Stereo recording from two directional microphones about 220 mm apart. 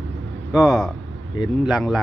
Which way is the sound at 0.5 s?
Centre (ahead or behind).